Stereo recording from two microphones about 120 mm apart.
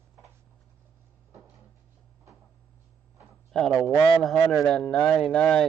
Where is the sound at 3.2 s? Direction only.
5° left (ahead or behind).